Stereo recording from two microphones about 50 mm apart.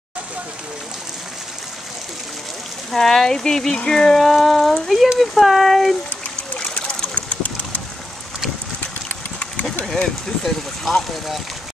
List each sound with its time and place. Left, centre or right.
2.9 s speech: centre
6.6 s splash: centre
9.4 s a sound: left
9.8 s speech: centre